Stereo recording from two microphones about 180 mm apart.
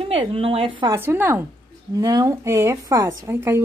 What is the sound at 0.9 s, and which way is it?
Speech, 10° right (ahead or behind).